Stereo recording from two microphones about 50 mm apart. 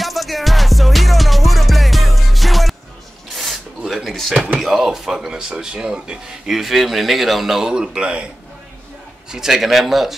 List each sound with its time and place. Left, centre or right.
0.0 s music: centre
3.3 s filing: centre
4.6 s speech: centre
6.5 s a man's voice: centre
9.3 s a man's voice: centre